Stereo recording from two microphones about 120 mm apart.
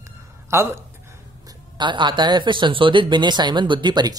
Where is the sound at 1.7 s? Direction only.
40° right (ahead or behind).